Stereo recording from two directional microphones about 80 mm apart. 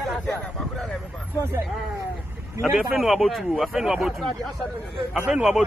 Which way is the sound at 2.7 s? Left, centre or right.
Centre.